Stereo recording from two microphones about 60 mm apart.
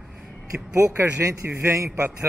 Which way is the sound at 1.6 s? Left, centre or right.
Right.